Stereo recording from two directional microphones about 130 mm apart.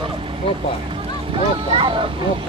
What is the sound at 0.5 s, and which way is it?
Vehicle, 45° right (ahead or behind).